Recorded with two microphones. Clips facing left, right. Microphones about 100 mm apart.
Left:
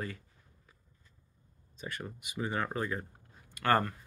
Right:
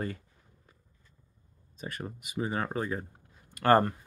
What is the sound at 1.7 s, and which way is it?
Speech, 40° right (ahead or behind).